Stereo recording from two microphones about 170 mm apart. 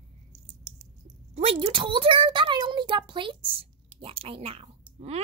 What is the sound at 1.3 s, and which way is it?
A child's voice, 35° right (ahead or behind).